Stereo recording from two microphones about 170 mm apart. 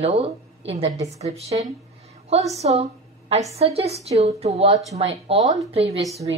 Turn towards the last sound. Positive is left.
turn(degrees=-35)  # may be behind; listen again after turning